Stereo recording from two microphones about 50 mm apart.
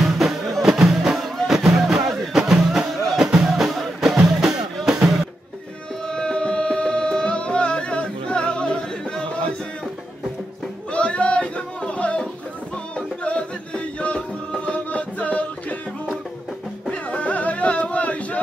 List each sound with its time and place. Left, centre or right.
0.0 s music: centre
6.0 s music: centre
10.9 s a sound: left
12.9 s music: centre
16.9 s music: left